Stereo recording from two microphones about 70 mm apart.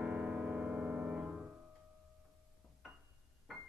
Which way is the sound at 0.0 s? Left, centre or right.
Centre.